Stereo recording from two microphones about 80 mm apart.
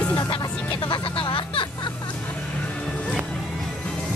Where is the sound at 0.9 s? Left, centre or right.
Left.